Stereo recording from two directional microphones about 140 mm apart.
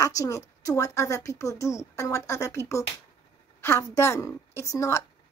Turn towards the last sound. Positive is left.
turn(degrees=20)  # may be behind; listen again after turning